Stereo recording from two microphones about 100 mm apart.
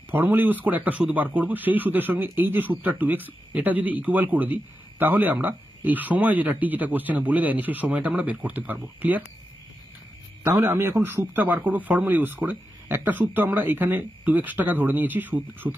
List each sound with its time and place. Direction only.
0.1 s speech: 20° right (ahead or behind)
10.4 s speech: 25° right (ahead or behind)